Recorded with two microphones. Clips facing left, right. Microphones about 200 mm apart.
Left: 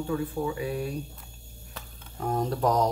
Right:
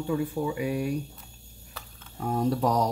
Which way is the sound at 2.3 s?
5° right (ahead or behind).